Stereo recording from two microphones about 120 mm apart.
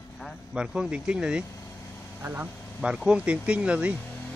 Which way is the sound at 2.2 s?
15° right (ahead or behind).